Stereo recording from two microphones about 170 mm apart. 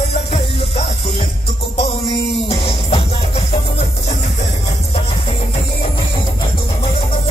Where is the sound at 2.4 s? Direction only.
35° left (ahead or behind).